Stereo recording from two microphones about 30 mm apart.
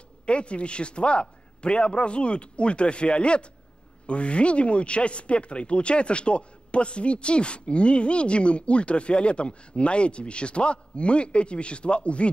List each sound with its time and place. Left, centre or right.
0.3 s speech: left